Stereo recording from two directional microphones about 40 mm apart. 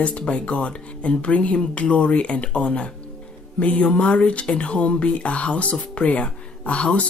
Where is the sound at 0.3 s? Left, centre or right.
Left.